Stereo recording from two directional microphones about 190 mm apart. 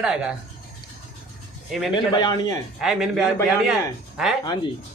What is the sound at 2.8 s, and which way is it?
Speech, centre (ahead or behind).